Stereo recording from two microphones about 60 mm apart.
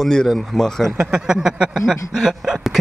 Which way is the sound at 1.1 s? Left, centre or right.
Centre.